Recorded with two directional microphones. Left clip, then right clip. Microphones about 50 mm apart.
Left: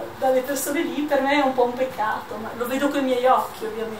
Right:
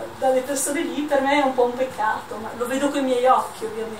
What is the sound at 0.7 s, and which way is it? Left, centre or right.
Speech, centre.